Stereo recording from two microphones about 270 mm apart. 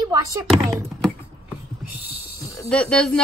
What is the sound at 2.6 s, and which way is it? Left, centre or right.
Speech, centre.